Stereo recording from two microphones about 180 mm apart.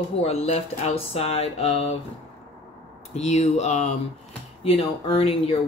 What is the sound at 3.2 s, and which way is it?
Speech, 40° left (ahead or behind).